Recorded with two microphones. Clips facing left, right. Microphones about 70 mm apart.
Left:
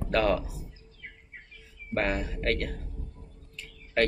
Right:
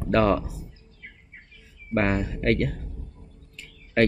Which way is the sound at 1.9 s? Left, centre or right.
Right.